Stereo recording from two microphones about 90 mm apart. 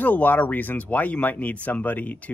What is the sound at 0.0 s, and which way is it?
Speech, 20° left (ahead or behind).